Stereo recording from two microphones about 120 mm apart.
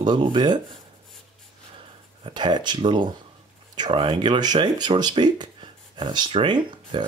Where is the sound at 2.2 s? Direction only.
40° right (ahead or behind).